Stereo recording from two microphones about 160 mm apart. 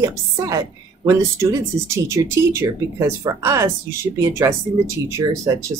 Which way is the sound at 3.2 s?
20° right (ahead or behind).